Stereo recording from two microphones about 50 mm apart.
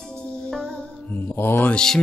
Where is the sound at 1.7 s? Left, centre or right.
Centre.